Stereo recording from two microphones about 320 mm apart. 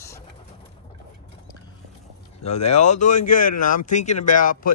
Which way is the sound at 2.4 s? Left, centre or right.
Left.